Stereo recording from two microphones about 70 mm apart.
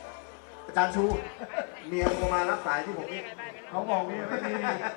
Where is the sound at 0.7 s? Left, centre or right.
Centre.